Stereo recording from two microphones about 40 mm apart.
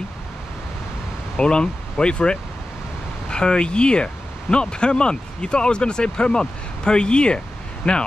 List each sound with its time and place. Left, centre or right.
1.3 s speech: left